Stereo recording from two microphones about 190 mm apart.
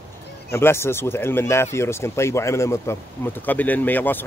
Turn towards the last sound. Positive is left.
turn(degrees=10)  # may be behind; listen again after turning